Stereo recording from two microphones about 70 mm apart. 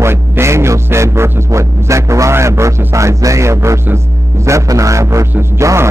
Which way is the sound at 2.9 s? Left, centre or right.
Right.